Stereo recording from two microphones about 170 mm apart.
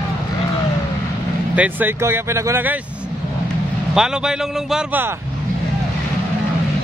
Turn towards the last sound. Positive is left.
turn(degrees=-5)  # may be behind; listen again after turning